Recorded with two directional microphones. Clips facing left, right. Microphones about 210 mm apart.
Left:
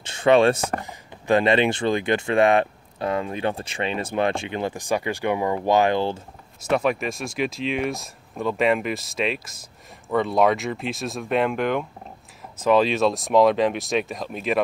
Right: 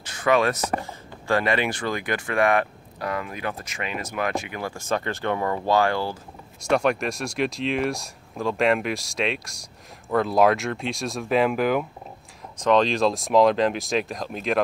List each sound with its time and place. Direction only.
0.0 s speech: 25° left (ahead or behind)
6.7 s speech: centre (ahead or behind)
12.5 s speech: 5° left (ahead or behind)